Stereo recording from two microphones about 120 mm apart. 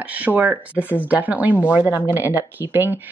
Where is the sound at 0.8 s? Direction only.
15° left (ahead or behind).